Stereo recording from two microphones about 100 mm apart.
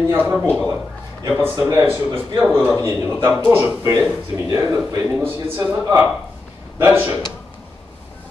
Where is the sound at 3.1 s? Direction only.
20° right (ahead or behind).